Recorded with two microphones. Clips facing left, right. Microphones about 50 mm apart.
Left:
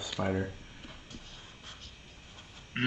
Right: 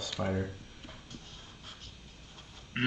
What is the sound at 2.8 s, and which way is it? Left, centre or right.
Speech, centre.